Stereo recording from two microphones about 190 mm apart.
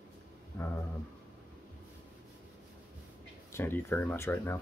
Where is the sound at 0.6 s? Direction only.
10° left (ahead or behind).